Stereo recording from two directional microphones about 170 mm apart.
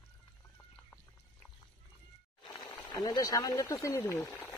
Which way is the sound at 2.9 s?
20° left (ahead or behind).